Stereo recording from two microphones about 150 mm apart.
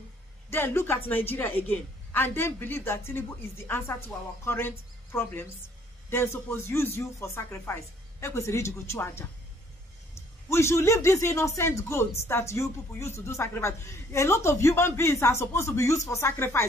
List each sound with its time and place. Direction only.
0.5 s speech: 15° left (ahead or behind)
10.5 s speech: 20° left (ahead or behind)